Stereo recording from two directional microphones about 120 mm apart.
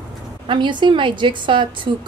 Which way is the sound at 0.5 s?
40° right (ahead or behind).